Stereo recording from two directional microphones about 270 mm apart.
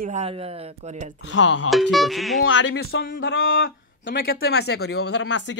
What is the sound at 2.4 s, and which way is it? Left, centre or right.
Speech, left.